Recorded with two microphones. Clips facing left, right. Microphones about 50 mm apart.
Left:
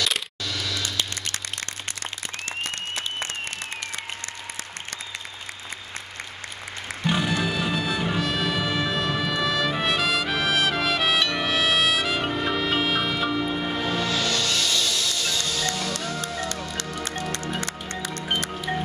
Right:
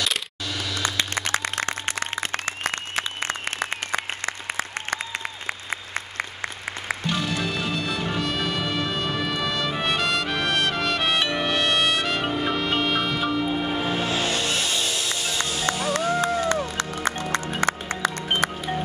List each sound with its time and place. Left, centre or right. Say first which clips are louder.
0.6 s vehicle: even; centre
0.8 s music: right 4 dB; right
1.9 s applause: right 7 dB; right
7.1 s music: left 4 dB; centre
13.7 s music: right 1 dB; right